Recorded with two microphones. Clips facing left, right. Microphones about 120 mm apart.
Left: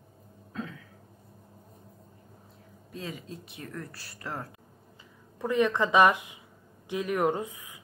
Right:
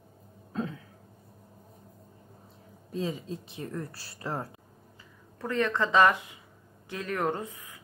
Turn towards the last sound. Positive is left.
turn(degrees=15)  # may be behind; listen again after turning